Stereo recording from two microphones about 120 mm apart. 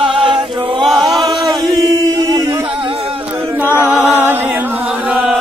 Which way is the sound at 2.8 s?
50° right (ahead or behind).